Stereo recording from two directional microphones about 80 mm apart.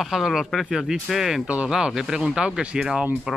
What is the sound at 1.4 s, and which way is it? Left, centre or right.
Speech, centre.